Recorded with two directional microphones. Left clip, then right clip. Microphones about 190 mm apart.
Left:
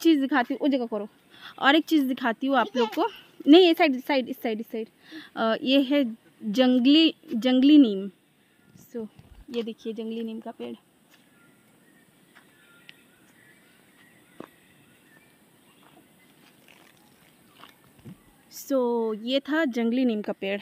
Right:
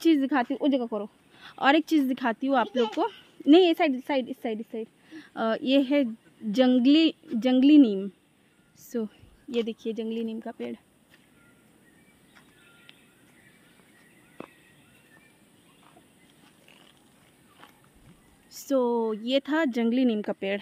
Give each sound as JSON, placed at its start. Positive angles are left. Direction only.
{"t": 0.0, "sound": "a woman's voice", "side_deg": 0}
{"t": 8.9, "sound": "a woman's voice", "side_deg": -65}
{"t": 9.7, "sound": "speech", "side_deg": -15}
{"t": 18.5, "sound": "a woman's voice", "side_deg": 0}